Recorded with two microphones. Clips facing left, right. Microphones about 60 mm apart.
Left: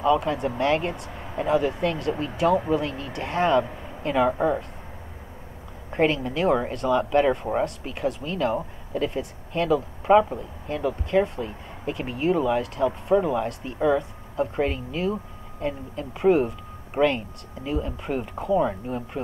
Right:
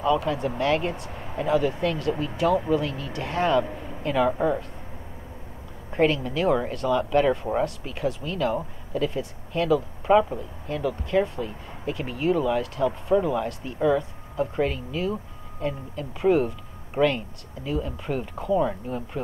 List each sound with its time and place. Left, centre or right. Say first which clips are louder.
0.0 s speech: left 1 dB; centre
5.9 s speech: even; centre